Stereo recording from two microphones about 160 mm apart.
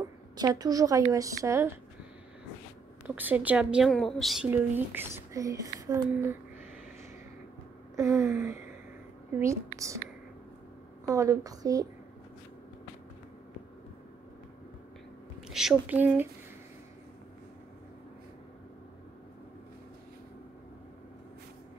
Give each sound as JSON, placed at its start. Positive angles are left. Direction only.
{"t": 0.4, "sound": "a woman's voice", "side_deg": -25}
{"t": 3.2, "sound": "speech", "side_deg": -10}
{"t": 4.5, "sound": "speech", "side_deg": -15}
{"t": 7.9, "sound": "a woman's voice", "side_deg": -20}
{"t": 11.1, "sound": "a woman's voice", "side_deg": -20}
{"t": 15.4, "sound": "speech", "side_deg": -5}